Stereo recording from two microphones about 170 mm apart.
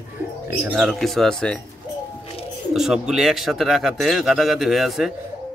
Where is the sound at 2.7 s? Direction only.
Centre (ahead or behind).